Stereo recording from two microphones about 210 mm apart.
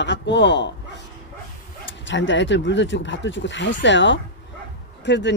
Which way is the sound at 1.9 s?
60° left (ahead or behind).